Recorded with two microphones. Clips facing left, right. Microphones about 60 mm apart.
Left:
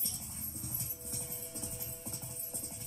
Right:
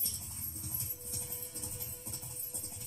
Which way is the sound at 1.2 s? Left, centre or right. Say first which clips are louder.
Left 2 dB; left.